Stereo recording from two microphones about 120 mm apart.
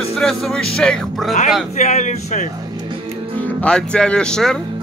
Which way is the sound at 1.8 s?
90° left.